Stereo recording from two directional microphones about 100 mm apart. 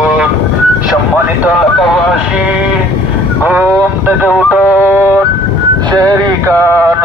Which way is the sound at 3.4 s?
25° right (ahead or behind).